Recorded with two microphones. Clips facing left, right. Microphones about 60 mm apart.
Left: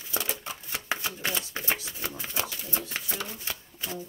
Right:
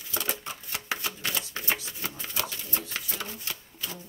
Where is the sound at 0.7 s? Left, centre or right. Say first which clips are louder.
Left 1 dB; left.